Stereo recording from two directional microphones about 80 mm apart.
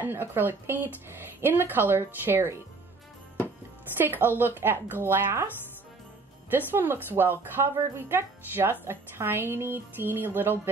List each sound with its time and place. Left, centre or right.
0.0 s speech: right
4.0 s speech: right
6.7 s speech: right